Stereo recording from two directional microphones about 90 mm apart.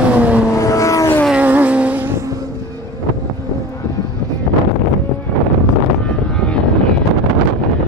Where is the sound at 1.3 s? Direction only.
15° right (ahead or behind).